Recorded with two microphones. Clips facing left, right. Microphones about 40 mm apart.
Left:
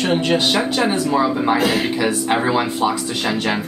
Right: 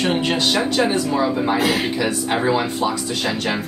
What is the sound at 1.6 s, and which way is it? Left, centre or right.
Speech, centre.